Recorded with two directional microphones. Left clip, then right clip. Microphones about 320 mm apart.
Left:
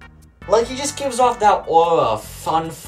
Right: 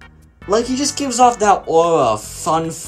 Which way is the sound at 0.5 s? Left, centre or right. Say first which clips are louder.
Even; centre.